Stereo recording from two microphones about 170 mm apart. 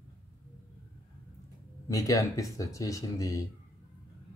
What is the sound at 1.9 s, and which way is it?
Speech, 20° left (ahead or behind).